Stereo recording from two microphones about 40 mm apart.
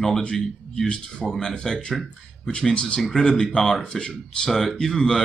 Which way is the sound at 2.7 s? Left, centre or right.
Left.